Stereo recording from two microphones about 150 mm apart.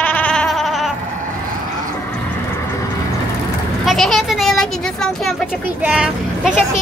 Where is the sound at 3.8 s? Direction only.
Centre (ahead or behind).